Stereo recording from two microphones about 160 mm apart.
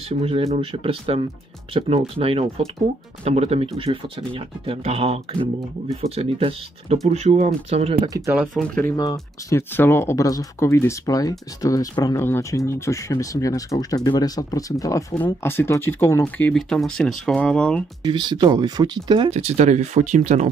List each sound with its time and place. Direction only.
0.2 s speech: 40° right (ahead or behind)
8.1 s speech: 15° right (ahead or behind)
8.5 s speech: 10° left (ahead or behind)
8.9 s speech: 25° left (ahead or behind); by 17.8 s 5° left (ahead or behind)
18.0 s speech: 25° right (ahead or behind)
19.3 s speech: 45° right (ahead or behind)